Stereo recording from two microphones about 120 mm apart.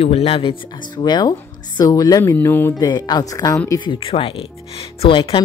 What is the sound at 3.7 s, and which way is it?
Speech, 45° left (ahead or behind).